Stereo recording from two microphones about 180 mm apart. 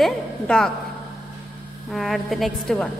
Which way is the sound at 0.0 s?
5° left (ahead or behind).